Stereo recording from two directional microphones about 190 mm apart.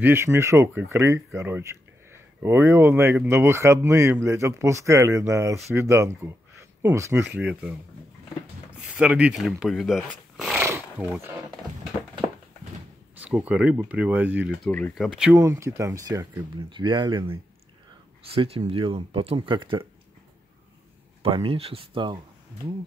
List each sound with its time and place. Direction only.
0.0 s speech: 15° right (ahead or behind)
10.6 s wild animals: 15° right (ahead or behind)
13.2 s speech: 5° right (ahead or behind)
14.6 s speech: 5° left (ahead or behind)
15.3 s speech: 15° right (ahead or behind)
18.3 s speech: 30° right (ahead or behind)
21.2 s speech: 30° right (ahead or behind)